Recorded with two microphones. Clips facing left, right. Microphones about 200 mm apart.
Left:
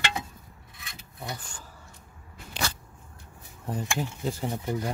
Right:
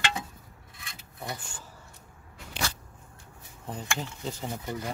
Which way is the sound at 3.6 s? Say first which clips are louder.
Left 4 dB; 5° left (ahead or behind).